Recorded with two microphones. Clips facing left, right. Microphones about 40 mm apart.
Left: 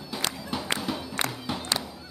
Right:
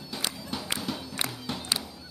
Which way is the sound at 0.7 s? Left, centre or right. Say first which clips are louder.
Left 3 dB; centre.